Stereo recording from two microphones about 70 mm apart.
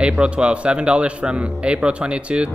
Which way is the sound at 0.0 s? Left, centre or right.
Centre.